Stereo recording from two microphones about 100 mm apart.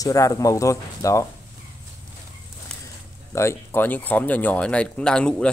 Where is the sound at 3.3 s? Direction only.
30° left (ahead or behind).